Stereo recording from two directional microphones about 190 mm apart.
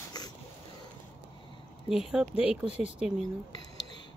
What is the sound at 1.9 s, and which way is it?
Speech, 5° right (ahead or behind).